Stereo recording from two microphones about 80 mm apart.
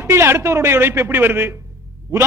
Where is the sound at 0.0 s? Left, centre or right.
Right.